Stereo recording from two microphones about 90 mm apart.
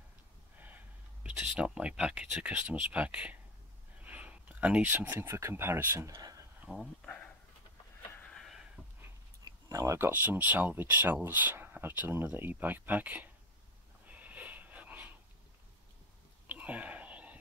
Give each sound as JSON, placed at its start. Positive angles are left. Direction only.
{"t": 1.2, "sound": "speech", "side_deg": -10}
{"t": 6.7, "sound": "speech", "side_deg": 10}
{"t": 8.1, "sound": "a sound", "side_deg": 15}
{"t": 8.4, "sound": "a sound", "side_deg": 0}
{"t": 9.7, "sound": "speech", "side_deg": -35}
{"t": 14.0, "sound": "wheeze", "side_deg": -15}
{"t": 16.4, "sound": "whispering", "side_deg": -15}